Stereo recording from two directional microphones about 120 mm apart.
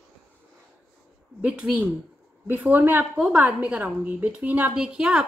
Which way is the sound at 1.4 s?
10° right (ahead or behind).